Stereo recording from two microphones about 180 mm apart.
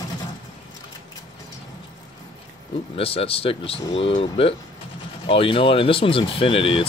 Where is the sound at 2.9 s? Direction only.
30° left (ahead or behind).